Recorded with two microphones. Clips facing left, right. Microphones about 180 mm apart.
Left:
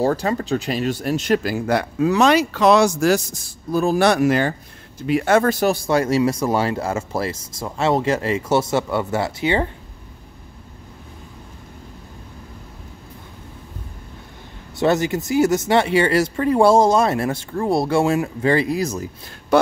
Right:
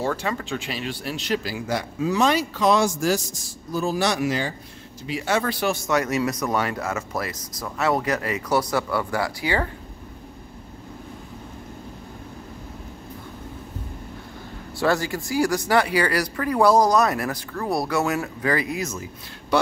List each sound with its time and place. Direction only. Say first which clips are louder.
0.0 s speech: left 6 dB; 40° left (ahead or behind)
14.8 s speech: left 4 dB; 20° left (ahead or behind)
19.5 s speech: left 5 dB; 50° left (ahead or behind)